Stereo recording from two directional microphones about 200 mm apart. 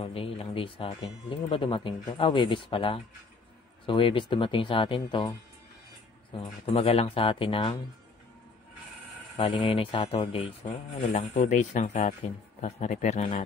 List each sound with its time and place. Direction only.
0.0 s speech: 30° left (ahead or behind)
6.6 s speech: 30° left (ahead or behind)
9.4 s speech: 25° left (ahead or behind)
10.6 s speech: 40° left (ahead or behind)